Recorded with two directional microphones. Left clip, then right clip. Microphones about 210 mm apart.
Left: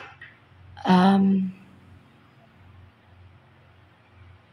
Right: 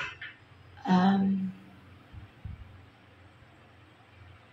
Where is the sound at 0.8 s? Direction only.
20° left (ahead or behind).